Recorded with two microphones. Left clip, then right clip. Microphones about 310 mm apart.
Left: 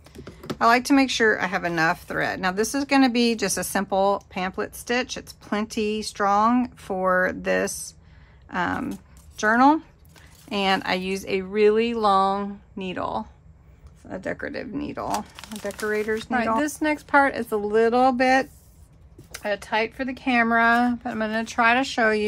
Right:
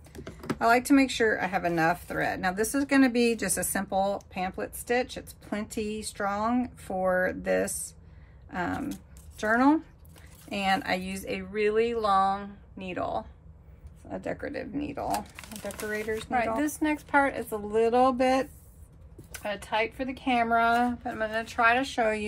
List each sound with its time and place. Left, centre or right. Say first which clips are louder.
0.6 s speech: left 4 dB; centre
19.4 s speech: left 5 dB; left